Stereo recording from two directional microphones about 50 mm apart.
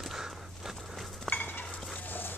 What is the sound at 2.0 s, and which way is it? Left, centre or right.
Dog, left.